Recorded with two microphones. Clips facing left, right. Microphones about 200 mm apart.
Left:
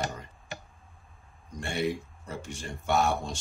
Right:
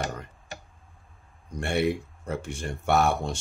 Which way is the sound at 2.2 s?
60° right (ahead or behind).